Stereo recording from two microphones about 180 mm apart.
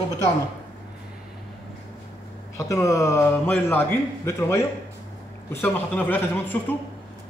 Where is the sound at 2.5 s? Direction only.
15° left (ahead or behind).